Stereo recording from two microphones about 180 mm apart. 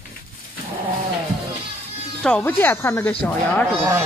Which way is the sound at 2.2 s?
5° left (ahead or behind).